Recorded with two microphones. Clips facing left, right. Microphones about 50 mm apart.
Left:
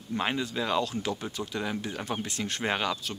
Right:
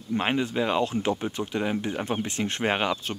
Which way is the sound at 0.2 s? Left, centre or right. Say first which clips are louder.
Right 4 dB; right.